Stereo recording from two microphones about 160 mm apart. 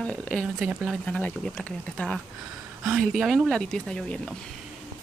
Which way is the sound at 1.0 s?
10° left (ahead or behind).